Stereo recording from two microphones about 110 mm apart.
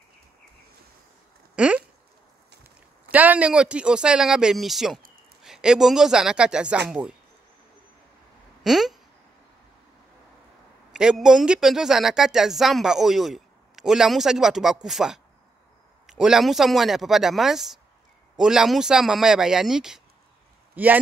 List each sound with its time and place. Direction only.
1.5 s a sound: 10° right (ahead or behind)
2.6 s speech: 15° right (ahead or behind)
8.6 s speech: centre (ahead or behind)
10.9 s speech: 5° right (ahead or behind)
20.7 s speech: 15° right (ahead or behind)